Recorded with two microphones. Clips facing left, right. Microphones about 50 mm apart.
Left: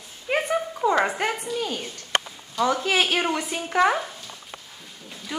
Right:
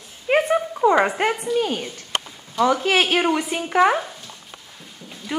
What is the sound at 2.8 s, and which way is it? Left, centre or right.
Speech, right.